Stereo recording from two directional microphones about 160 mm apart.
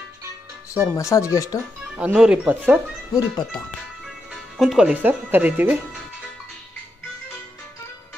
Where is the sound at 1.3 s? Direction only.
20° left (ahead or behind).